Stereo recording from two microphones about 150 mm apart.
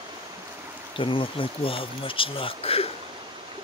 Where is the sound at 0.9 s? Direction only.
35° left (ahead or behind).